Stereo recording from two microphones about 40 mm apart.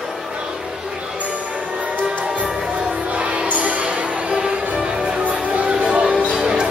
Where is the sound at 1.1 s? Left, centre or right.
Right.